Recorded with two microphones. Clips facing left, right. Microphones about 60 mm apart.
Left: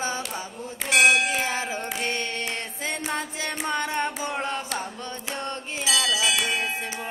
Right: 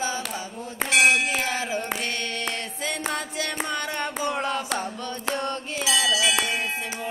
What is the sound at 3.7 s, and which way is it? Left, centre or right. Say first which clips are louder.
Carnatic music: left 2 dB; left.